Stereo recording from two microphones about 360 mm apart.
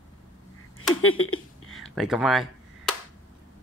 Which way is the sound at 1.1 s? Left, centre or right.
Left.